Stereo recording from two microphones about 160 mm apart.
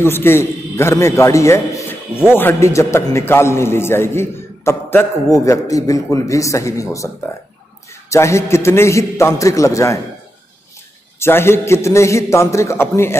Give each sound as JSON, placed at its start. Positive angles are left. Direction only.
{"t": 0.0, "sound": "a man's voice", "side_deg": 15}
{"t": 8.1, "sound": "a man's voice", "side_deg": 20}
{"t": 11.1, "sound": "a man's voice", "side_deg": 15}